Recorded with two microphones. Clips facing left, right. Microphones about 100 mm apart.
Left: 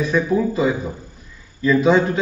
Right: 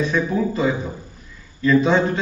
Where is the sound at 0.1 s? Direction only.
5° left (ahead or behind).